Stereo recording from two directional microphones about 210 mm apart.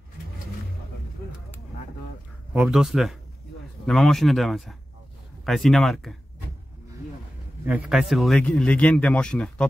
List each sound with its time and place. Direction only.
2.5 s speech: 5° right (ahead or behind)
7.6 s speech: 5° right (ahead or behind)